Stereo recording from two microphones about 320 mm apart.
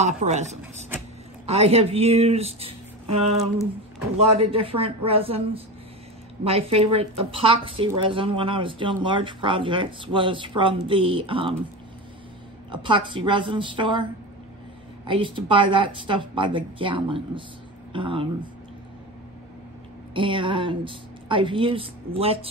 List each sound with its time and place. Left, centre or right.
0.0 s a woman's voice: right
4.4 s speech: centre
12.7 s speech: centre
15.0 s speech: centre
20.2 s speech: centre